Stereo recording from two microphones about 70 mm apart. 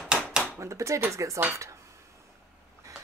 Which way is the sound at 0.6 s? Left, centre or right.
Right.